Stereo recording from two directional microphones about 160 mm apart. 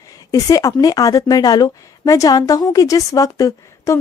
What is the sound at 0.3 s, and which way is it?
A woman's voice, 20° left (ahead or behind).